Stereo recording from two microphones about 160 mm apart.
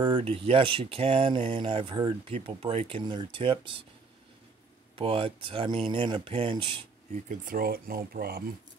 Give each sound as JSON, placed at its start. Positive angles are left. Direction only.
{"t": 0.0, "sound": "speech", "side_deg": -35}
{"t": 4.9, "sound": "speech", "side_deg": -35}
{"t": 7.2, "sound": "speech", "side_deg": -65}